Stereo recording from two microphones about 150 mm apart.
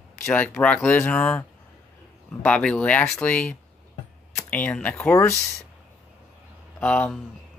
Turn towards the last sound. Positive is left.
turn(degrees=5)  # may be behind; listen again after turning